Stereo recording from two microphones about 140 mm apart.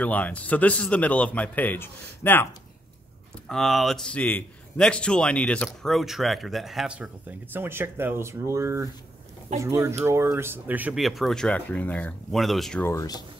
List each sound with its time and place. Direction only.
0.0 s speech: 10° left (ahead or behind)
3.4 s speech: centre (ahead or behind)
11.0 s speech: centre (ahead or behind)
12.8 s speech: 25° left (ahead or behind)